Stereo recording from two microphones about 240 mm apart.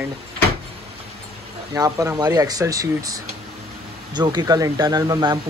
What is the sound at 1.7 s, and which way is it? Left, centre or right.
A man's voice, centre.